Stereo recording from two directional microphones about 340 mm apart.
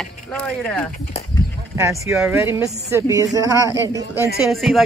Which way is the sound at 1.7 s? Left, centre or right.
Centre.